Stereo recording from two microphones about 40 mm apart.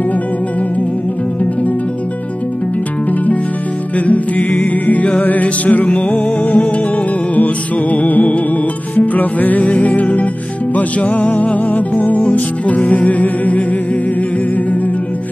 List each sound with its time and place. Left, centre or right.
4.0 s music: left
12.2 s music: left